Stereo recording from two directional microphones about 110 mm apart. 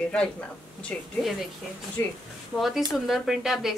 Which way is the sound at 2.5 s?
Centre (ahead or behind).